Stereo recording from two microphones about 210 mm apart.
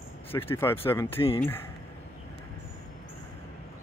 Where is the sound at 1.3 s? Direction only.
10° left (ahead or behind).